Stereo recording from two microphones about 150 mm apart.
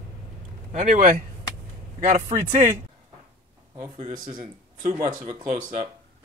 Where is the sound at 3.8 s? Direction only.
30° right (ahead or behind).